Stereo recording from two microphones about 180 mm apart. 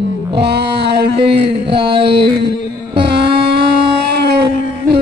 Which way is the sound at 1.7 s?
30° right (ahead or behind).